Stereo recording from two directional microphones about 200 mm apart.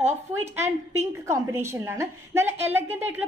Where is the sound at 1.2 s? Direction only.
15° right (ahead or behind).